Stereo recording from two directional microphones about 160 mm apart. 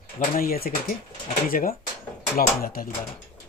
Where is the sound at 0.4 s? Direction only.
65° left (ahead or behind).